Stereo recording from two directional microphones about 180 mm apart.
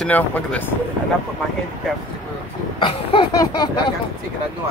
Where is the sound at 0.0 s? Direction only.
10° left (ahead or behind).